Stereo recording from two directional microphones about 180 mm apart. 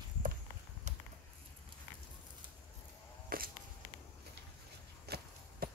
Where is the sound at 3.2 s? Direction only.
55° right (ahead or behind).